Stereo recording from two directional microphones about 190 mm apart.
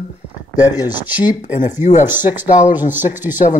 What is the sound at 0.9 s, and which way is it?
Speech, 10° right (ahead or behind).